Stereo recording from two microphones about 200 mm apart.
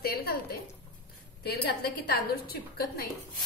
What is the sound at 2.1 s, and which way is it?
Speech, 50° left (ahead or behind).